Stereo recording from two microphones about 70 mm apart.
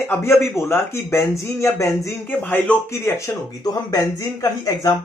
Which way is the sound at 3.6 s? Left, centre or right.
Left.